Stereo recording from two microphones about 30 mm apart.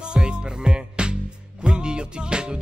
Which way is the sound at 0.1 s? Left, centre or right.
Right.